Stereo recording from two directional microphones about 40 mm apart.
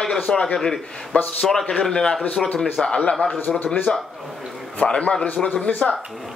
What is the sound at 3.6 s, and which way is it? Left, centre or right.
Speech, left.